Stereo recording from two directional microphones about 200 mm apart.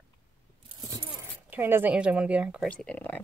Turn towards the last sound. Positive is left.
turn(degrees=5)  # may be behind; listen again after turning